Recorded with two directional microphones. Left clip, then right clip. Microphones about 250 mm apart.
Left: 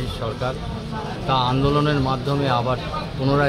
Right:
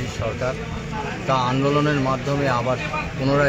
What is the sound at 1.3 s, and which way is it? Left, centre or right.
A man's voice, centre.